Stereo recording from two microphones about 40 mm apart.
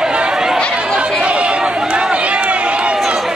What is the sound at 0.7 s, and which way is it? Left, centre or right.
Chatter, right.